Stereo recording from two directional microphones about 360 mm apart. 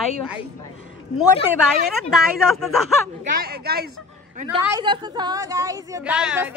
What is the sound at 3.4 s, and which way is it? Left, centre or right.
Speech, right.